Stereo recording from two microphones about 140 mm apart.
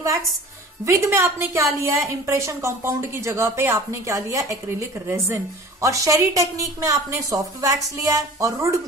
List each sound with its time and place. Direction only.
0.8 s speech: 20° right (ahead or behind)